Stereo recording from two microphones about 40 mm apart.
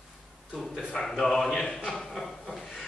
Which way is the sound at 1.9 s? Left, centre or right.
Centre.